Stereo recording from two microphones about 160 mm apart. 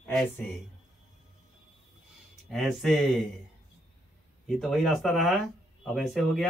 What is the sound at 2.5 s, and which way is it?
Speech, centre (ahead or behind).